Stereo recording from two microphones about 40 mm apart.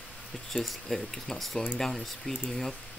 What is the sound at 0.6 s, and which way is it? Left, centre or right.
Speech, centre.